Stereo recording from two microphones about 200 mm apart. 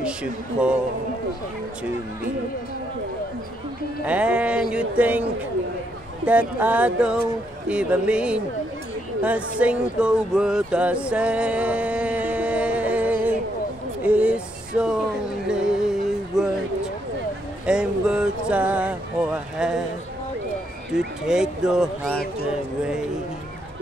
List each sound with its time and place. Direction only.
0.0 s speech: 5° right (ahead or behind)
4.0 s speech: 5° right (ahead or behind)
6.2 s speech: 10° right (ahead or behind)
14.0 s a sound: 5° right (ahead or behind)
15.4 s music: 5° right (ahead or behind)
17.6 s a sound: 5° right (ahead or behind)
21.3 s speech: 5° right (ahead or behind)